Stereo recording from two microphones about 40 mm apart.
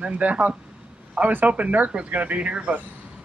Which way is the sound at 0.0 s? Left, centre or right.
Right.